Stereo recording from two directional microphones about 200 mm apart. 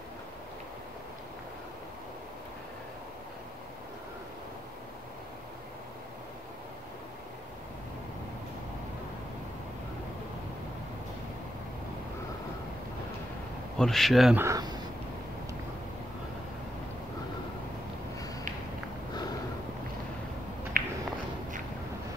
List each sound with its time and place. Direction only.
13.7 s speech: centre (ahead or behind)
14.4 s speech: 15° right (ahead or behind)
20.7 s a sound: 50° right (ahead or behind)